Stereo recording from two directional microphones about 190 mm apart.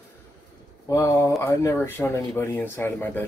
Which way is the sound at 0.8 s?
15° left (ahead or behind).